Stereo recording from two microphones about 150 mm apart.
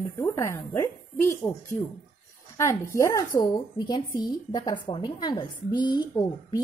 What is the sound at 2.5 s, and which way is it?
A woman's voice, 20° left (ahead or behind).